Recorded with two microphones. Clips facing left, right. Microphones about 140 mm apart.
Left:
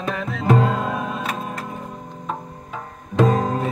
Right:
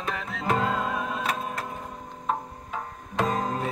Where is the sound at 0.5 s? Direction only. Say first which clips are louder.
Left 3 dB; 45° left (ahead or behind).